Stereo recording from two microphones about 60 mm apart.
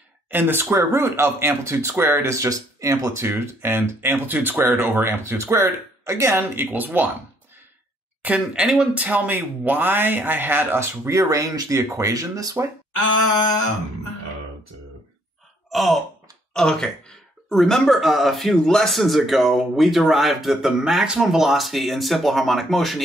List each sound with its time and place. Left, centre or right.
0.3 s speech: right
0.7 s speech: right
2.3 s speech: right
8.2 s speech: right
11.1 s speech: right
15.7 s sigh: centre
16.5 s speech: centre